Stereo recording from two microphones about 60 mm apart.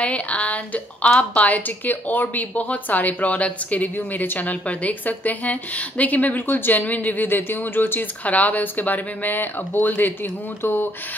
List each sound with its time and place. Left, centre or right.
0.0 s a woman's voice: left